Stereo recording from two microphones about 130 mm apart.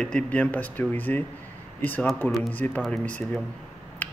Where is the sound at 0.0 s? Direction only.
10° left (ahead or behind).